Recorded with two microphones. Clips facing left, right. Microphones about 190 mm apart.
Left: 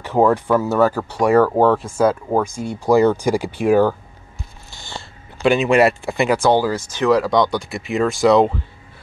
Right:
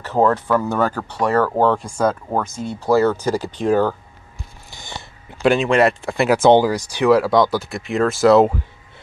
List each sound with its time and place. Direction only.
0.0 s speech: 10° left (ahead or behind)
5.4 s speech: centre (ahead or behind)
6.4 s speech: 20° right (ahead or behind)